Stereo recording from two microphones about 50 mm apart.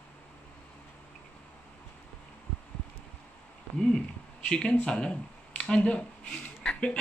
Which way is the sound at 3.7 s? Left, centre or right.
Centre.